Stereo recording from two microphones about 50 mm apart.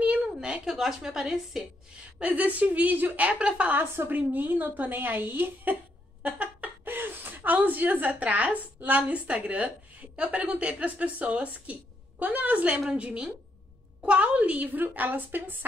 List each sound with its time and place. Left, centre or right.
0.0 s a sound: right
0.7 s a woman's voice: centre
2.1 s speech: right
4.2 s a woman's voice: right
6.2 s a sound: right
6.8 s a woman's voice: right